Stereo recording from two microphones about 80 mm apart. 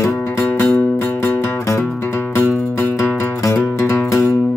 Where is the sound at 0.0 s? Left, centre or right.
Left.